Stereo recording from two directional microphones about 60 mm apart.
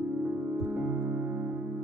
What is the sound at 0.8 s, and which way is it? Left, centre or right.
Music, right.